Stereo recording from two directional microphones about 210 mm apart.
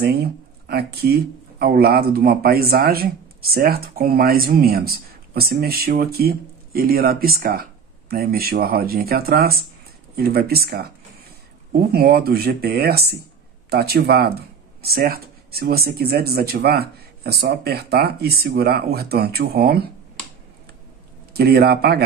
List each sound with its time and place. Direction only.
0.0 s speech: 50° right (ahead or behind)
11.9 s speech: 50° right (ahead or behind)
21.3 s speech: 50° right (ahead or behind)